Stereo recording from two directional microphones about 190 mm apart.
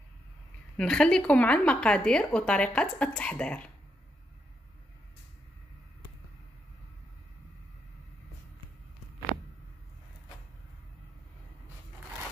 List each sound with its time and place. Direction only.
0.7 s a woman's voice: 5° left (ahead or behind)